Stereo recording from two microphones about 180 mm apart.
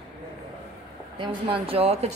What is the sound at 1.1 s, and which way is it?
Speech, 30° right (ahead or behind).